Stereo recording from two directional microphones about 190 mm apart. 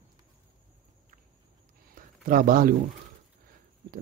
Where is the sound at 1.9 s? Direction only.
45° right (ahead or behind).